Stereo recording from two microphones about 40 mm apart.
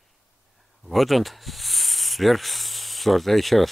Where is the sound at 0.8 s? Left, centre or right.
Centre.